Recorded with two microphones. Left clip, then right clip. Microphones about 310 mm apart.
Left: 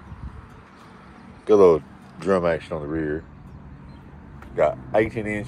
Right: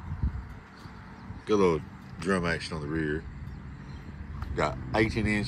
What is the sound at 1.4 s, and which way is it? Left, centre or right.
Speech, centre.